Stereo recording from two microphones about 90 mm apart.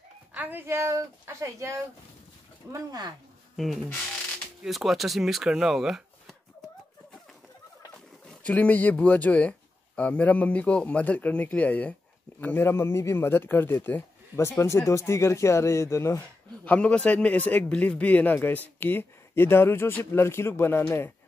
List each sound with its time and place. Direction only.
0.3 s speech: 20° right (ahead or behind)
2.7 s speech: 45° right (ahead or behind)
3.5 s speech: centre (ahead or behind)
8.3 s a man's voice: 15° left (ahead or behind); by 16.2 s 35° left (ahead or behind)
16.6 s a man's voice: 15° left (ahead or behind)